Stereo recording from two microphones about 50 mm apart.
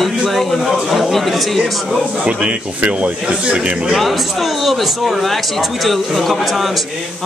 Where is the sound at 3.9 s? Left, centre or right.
Centre.